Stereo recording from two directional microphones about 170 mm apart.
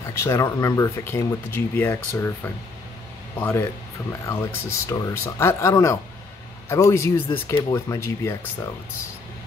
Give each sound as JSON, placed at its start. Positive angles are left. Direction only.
{"t": 0.0, "sound": "speech", "side_deg": 15}